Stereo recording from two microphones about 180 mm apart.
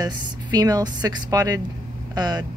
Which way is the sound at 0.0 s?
20° right (ahead or behind).